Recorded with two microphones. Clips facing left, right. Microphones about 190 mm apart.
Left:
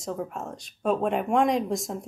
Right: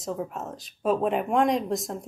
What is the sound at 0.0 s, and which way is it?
Speech, centre (ahead or behind).